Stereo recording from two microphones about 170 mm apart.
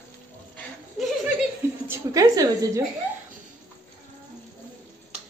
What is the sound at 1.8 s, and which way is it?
A woman's voice, 15° right (ahead or behind).